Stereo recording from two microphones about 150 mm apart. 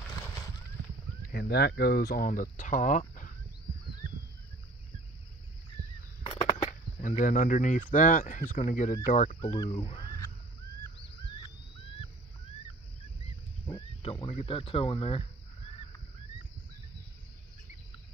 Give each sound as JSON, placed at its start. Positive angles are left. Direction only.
{"t": 1.3, "sound": "speech", "side_deg": 90}
{"t": 7.0, "sound": "speech", "side_deg": 65}
{"t": 11.0, "sound": "a sound", "side_deg": 35}
{"t": 13.2, "sound": "wild animals", "side_deg": 35}